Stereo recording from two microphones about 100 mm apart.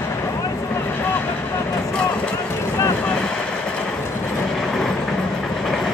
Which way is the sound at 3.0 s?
10° left (ahead or behind).